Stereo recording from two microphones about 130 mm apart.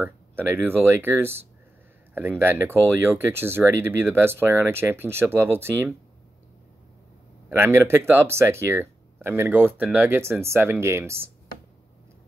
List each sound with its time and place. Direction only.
0.0 s speech: 15° right (ahead or behind)
7.4 s speech: 15° right (ahead or behind)